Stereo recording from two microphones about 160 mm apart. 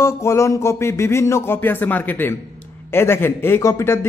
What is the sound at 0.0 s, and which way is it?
A man's voice, 15° left (ahead or behind).